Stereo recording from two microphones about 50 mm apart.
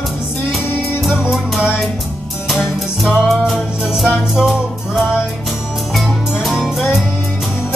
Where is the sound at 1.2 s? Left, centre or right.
Centre.